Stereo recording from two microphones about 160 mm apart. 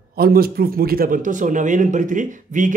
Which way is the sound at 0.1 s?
70° right (ahead or behind).